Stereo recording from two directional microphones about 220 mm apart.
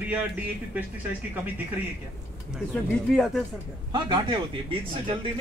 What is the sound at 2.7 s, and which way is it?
Speech, centre (ahead or behind).